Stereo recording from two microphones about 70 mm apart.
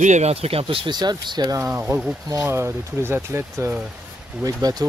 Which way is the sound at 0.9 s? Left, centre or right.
Right.